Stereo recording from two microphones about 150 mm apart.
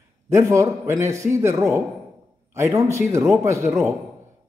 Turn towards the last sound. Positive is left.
turn(degrees=-20)  # may be behind; listen again after turning